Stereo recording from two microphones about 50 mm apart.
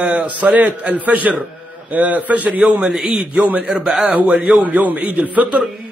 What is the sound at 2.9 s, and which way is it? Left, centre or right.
Speech, centre.